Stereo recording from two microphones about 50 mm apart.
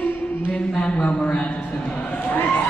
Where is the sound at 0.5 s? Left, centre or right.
Left.